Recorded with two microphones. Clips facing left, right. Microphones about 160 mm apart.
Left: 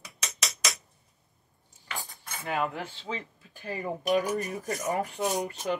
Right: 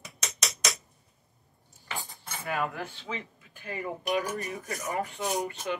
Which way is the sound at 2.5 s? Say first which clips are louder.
Left 1 dB; 25° left (ahead or behind).